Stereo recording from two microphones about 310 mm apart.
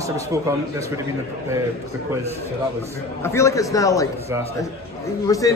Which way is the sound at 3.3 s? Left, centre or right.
Centre.